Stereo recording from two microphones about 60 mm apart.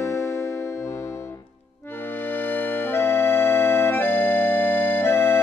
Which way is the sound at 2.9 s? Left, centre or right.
Left.